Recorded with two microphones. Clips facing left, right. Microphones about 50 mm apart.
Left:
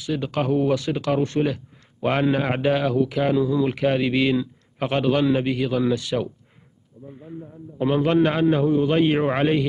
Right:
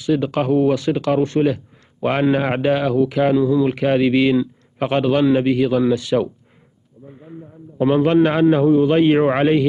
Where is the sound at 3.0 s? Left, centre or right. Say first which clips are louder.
Right 5 dB; right.